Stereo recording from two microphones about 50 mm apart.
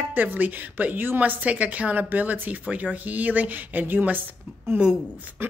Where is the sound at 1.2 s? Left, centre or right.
Right.